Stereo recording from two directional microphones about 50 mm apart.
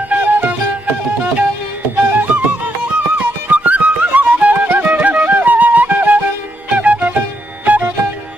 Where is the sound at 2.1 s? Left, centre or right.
Right.